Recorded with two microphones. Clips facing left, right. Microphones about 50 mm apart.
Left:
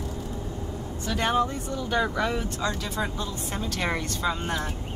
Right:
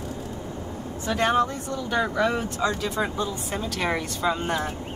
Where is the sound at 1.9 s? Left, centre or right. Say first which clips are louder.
Right 2 dB; centre.